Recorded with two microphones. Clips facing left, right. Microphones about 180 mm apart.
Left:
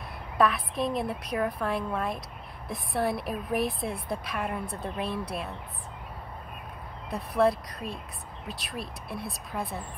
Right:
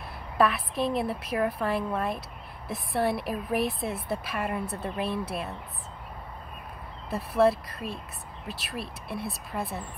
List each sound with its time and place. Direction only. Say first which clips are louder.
0.4 s a woman's voice: right 1 dB; centre (ahead or behind)
7.1 s a woman's voice: right 2 dB; 5° right (ahead or behind)